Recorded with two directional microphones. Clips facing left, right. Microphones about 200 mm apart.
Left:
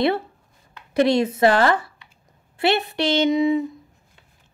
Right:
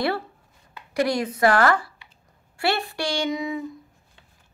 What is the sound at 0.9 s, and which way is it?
A woman's voice, 25° left (ahead or behind).